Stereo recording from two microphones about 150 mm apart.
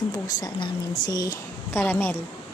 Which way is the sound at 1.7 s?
15° left (ahead or behind).